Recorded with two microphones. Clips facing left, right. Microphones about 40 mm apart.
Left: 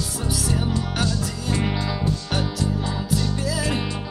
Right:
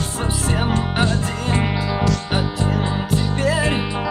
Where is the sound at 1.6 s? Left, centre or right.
Centre.